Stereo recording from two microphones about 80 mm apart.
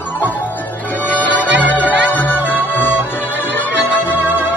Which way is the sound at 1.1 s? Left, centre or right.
Centre.